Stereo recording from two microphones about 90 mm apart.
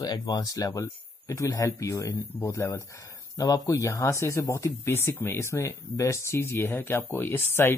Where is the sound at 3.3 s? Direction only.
40° left (ahead or behind).